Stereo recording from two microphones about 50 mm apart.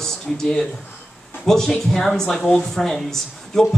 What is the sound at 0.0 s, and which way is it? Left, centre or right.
Speech, centre.